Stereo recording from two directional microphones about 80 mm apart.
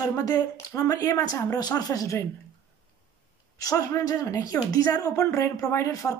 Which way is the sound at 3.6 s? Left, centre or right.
Left.